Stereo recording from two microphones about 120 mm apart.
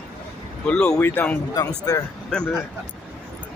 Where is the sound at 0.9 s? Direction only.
20° left (ahead or behind).